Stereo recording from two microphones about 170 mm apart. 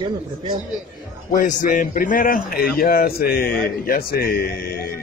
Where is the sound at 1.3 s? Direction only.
55° left (ahead or behind).